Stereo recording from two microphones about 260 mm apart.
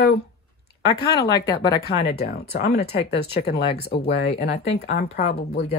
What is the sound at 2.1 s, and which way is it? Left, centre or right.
Speech, left.